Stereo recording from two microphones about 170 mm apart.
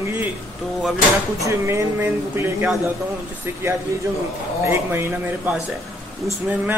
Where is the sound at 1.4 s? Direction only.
15° right (ahead or behind).